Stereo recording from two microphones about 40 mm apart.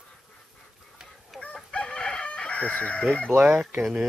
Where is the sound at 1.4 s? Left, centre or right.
Left.